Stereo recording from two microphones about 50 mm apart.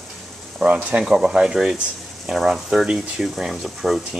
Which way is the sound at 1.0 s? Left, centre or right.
Centre.